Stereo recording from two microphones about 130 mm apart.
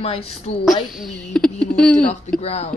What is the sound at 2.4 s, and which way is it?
Speech, 55° left (ahead or behind).